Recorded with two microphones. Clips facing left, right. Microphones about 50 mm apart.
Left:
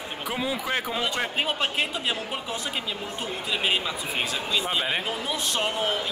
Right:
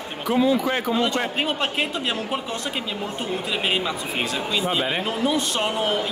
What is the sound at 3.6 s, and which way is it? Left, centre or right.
Speech, centre.